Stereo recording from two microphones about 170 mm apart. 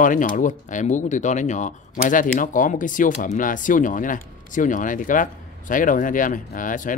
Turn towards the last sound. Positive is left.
turn(degrees=50)  # may be behind; listen again after turning